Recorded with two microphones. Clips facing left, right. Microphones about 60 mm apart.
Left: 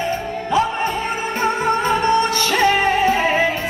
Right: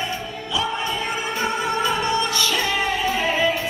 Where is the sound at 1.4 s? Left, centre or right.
Left.